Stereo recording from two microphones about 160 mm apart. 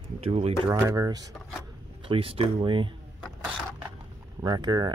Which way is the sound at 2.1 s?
35° right (ahead or behind).